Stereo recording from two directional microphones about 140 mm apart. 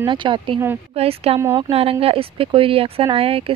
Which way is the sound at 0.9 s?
45° right (ahead or behind).